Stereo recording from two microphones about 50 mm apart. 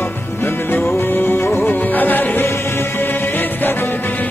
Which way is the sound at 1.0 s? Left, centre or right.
Left.